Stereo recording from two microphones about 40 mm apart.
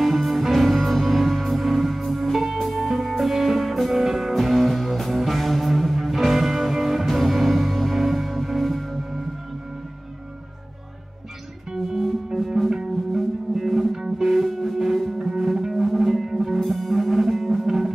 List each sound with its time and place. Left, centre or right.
0.0 s music: centre
11.7 s music: centre